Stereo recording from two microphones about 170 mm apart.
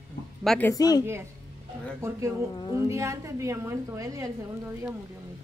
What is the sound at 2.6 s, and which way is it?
Speech, 25° left (ahead or behind).